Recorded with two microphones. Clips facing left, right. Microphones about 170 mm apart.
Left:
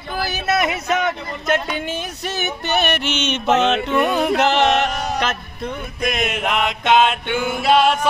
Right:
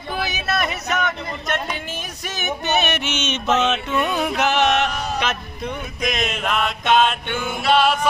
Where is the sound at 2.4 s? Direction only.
20° right (ahead or behind).